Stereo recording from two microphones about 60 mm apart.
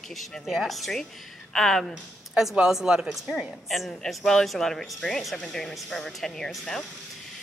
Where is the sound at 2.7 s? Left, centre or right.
Centre.